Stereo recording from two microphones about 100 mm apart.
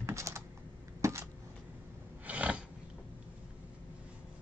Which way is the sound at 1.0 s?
30° right (ahead or behind).